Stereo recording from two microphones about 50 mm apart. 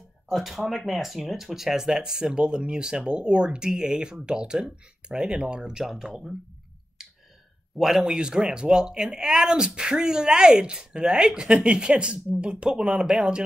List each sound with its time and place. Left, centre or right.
0.3 s speech: centre
7.7 s speech: centre